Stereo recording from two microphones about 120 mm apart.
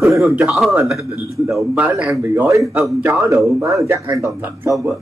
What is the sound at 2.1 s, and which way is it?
A man's voice, 20° right (ahead or behind).